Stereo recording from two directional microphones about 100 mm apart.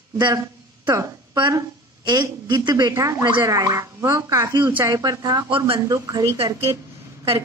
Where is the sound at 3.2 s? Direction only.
50° right (ahead or behind).